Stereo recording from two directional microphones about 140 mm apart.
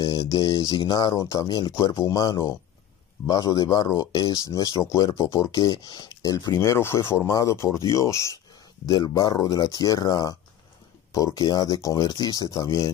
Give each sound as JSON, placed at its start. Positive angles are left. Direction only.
{"t": 0.0, "sound": "speech", "side_deg": 25}